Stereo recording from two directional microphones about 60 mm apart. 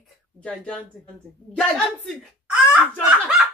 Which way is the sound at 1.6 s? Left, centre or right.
Centre.